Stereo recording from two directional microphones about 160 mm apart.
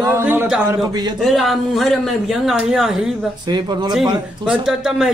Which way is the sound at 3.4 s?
25° right (ahead or behind).